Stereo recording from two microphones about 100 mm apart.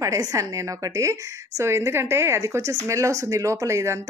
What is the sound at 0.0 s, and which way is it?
A woman's voice, 35° right (ahead or behind).